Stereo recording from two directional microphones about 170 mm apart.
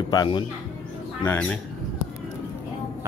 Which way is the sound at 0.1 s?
25° left (ahead or behind).